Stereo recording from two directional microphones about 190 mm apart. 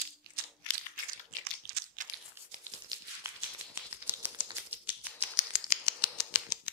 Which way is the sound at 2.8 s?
15° right (ahead or behind).